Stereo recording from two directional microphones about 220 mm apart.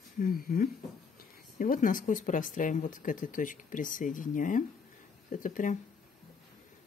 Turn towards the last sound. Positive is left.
turn(degrees=35)  # may be behind; listen again after turning